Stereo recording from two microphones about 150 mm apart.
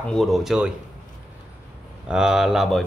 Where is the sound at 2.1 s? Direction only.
5° right (ahead or behind).